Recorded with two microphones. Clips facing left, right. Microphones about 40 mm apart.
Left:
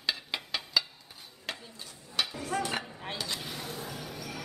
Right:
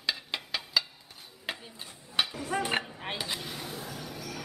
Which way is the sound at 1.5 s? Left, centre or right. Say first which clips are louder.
Right 2 dB; centre.